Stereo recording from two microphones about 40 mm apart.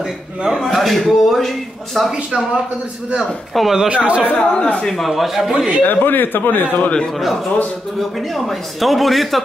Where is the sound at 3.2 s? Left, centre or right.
Centre.